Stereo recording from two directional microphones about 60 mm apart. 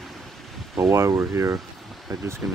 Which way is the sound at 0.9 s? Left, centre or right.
Right.